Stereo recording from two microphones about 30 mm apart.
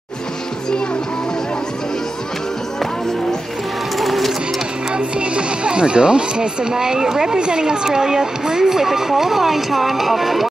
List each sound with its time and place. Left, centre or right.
4.0 s music: centre
4.9 s speech: right; by 7.3 s centre
7.3 s speech: right; by 10.5 s centre